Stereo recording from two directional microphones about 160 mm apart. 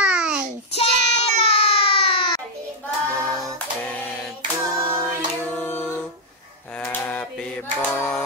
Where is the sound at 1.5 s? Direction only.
35° left (ahead or behind).